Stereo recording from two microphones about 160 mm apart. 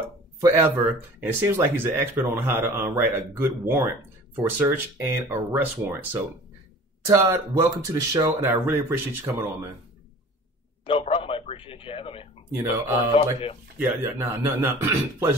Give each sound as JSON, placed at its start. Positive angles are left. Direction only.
{"t": 0.4, "sound": "speech", "side_deg": -20}
{"t": 10.9, "sound": "a sound", "side_deg": 35}
{"t": 13.1, "sound": "speech", "side_deg": 35}
{"t": 13.7, "sound": "speech", "side_deg": -15}